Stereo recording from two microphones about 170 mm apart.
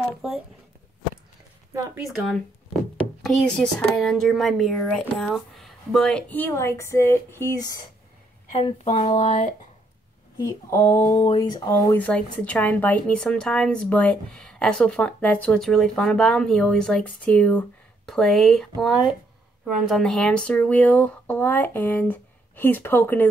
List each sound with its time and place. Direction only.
2.0 s a woman's voice: centre (ahead or behind)
8.8 s speech: 40° left (ahead or behind)
10.4 s speech: 20° left (ahead or behind)
12.0 s a woman's voice: 10° left (ahead or behind)